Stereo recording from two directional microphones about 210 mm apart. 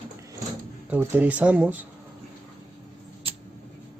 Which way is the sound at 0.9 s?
10° right (ahead or behind).